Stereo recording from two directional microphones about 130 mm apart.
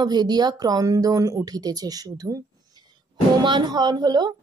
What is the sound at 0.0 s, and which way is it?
A woman's voice, 35° right (ahead or behind).